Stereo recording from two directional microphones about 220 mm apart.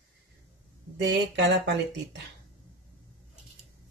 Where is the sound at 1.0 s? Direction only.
55° right (ahead or behind).